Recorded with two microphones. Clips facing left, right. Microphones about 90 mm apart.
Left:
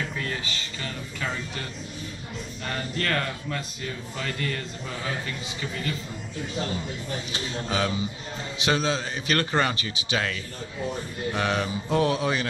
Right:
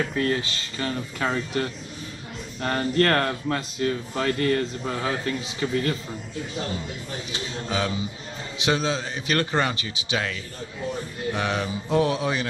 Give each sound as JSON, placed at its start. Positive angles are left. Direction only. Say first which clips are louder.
{"t": 0.1, "sound": "speech", "louder": "right 7 dB", "side_deg": -45}
{"t": 5.6, "sound": "a man's voice", "louder": "right 9 dB", "side_deg": -35}
{"t": 7.3, "sound": "a man's voice", "louder": "right 1 dB", "side_deg": 0}
{"t": 11.3, "sound": "a man's voice", "louder": "left 1 dB", "side_deg": -5}